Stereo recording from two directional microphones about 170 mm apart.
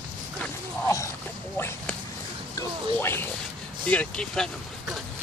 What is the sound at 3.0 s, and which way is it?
Zipper, 15° left (ahead or behind).